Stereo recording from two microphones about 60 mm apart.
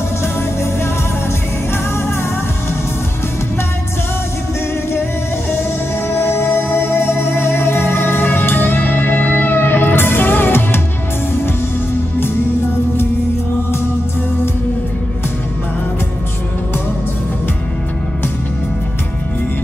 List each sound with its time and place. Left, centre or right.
6.0 s music: left